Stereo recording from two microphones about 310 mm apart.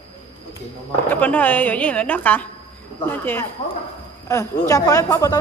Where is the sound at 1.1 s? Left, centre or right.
Centre.